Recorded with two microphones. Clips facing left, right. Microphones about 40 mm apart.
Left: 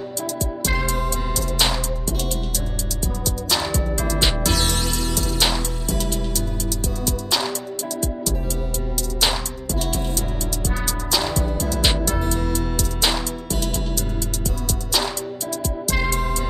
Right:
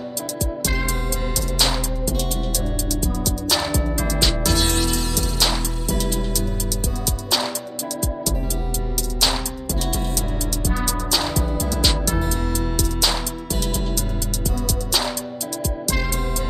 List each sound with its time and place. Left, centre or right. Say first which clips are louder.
0.7 s music: left 4 dB; centre
3.4 s music: even; centre
4.2 s music: even; left
4.6 s music: right 2 dB; centre
10.9 s music: left 2 dB; centre